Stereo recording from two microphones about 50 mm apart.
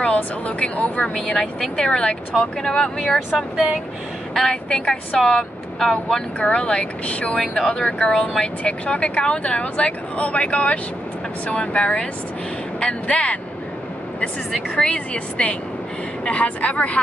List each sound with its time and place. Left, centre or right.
0.0 s speech: left
1.2 s speech: centre
4.3 s speech: centre; by 7.3 s left
7.3 s speech: centre
14.9 s speech: left